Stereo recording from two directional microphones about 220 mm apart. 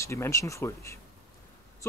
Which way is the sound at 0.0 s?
15° left (ahead or behind).